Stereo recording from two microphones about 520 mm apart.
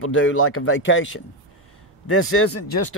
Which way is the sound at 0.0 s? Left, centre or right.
Left.